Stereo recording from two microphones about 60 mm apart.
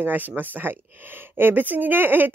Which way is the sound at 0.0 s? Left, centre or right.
Right.